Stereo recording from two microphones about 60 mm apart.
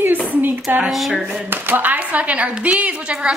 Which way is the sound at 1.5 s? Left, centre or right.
Right.